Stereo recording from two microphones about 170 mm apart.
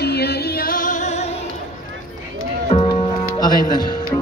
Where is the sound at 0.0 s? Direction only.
70° left (ahead or behind); by 1.2 s 45° left (ahead or behind).